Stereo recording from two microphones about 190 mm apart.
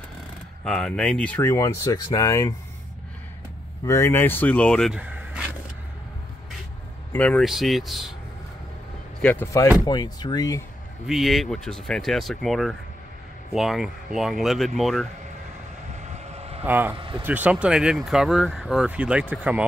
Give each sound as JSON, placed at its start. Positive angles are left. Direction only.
{"t": 0.7, "sound": "speech", "side_deg": 5}
{"t": 3.8, "sound": "speech", "side_deg": 15}
{"t": 7.1, "sound": "speech", "side_deg": 10}
{"t": 9.2, "sound": "speech", "side_deg": 10}
{"t": 11.1, "sound": "speech", "side_deg": 0}
{"t": 16.0, "sound": "vehicle", "side_deg": -35}
{"t": 16.6, "sound": "speech", "side_deg": -10}
{"t": 16.9, "sound": "speech", "side_deg": -25}
{"t": 17.2, "sound": "speech", "side_deg": -10}